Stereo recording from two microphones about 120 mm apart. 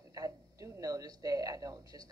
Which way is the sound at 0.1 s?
30° right (ahead or behind).